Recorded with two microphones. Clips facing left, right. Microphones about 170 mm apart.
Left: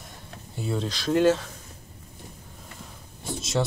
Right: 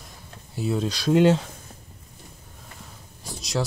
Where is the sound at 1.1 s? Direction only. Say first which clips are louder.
Right 2 dB; 15° right (ahead or behind).